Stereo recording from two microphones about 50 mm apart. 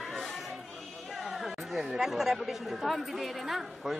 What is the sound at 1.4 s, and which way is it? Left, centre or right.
Chatter, centre.